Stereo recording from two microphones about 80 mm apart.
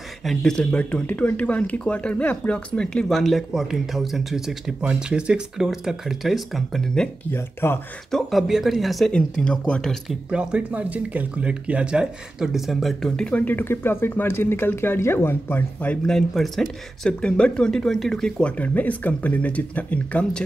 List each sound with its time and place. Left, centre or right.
0.2 s speech: centre
7.2 s speech: left
8.1 s speech: centre
9.1 s speech: centre
10.3 s speech: centre
13.4 s speech: left
15.9 s speech: centre
18.6 s speech: centre